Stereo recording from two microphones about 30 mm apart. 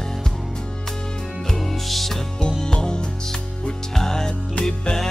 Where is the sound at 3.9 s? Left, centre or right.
Centre.